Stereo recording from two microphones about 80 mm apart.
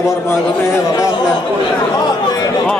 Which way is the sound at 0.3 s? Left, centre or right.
Left.